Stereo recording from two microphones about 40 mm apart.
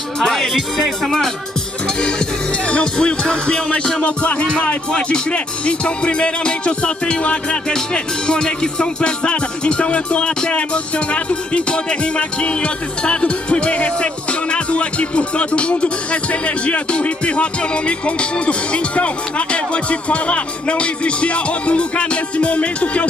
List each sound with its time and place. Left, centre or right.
0.2 s speech: centre
2.0 s music: left
4.0 s music: left